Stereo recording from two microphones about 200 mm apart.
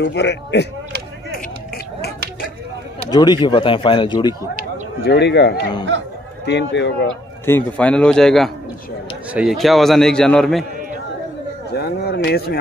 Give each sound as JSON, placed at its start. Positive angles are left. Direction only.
{"t": 0.0, "sound": "speech", "side_deg": 60}
{"t": 3.1, "sound": "a man's voice", "side_deg": 20}
{"t": 5.0, "sound": "speech", "side_deg": 55}
{"t": 7.4, "sound": "a man's voice", "side_deg": 10}
{"t": 11.7, "sound": "speech", "side_deg": 55}